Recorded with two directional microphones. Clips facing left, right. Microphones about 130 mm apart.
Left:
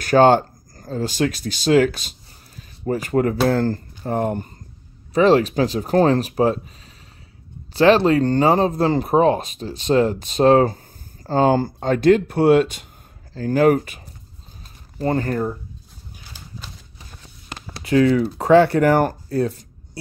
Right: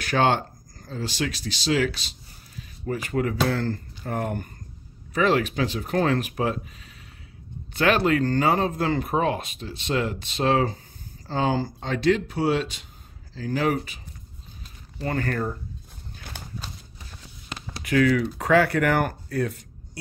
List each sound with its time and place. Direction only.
0.0 s speech: 40° left (ahead or behind)
7.7 s speech: 30° left (ahead or behind); by 14.0 s 45° left (ahead or behind)
15.0 s speech: 30° left (ahead or behind)
16.3 s a sound: 60° right (ahead or behind)
17.8 s speech: 30° left (ahead or behind)